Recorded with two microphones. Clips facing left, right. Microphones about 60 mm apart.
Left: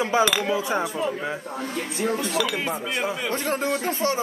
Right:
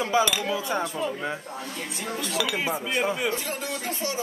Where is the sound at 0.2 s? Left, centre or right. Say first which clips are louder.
Left 3 dB; left.